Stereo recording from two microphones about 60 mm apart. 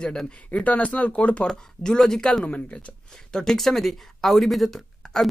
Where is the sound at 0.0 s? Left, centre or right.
Centre.